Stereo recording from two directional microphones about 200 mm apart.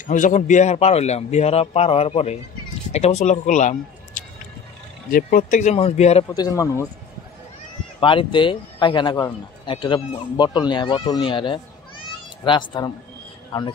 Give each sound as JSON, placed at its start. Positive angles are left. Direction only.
{"t": 0.0, "sound": "speech", "side_deg": 40}
{"t": 6.3, "sound": "speech", "side_deg": 20}
{"t": 8.0, "sound": "speech", "side_deg": 25}